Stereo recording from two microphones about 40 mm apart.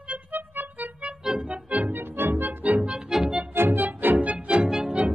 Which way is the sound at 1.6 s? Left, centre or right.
Right.